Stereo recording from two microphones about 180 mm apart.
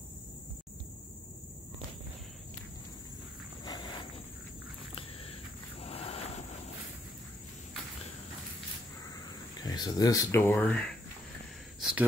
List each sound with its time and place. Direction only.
3.6 s walk: 25° left (ahead or behind)
5.8 s a sound: 35° left (ahead or behind)
9.6 s speech: 20° left (ahead or behind)
11.8 s gasp: 5° right (ahead or behind)